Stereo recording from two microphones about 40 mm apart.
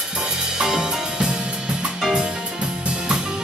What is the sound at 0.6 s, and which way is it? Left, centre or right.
Drum kit, centre.